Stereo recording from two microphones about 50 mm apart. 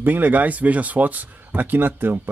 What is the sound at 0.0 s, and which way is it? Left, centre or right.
Speech, right.